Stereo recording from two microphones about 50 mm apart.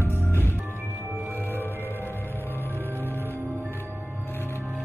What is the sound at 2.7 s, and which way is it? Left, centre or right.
Music, right.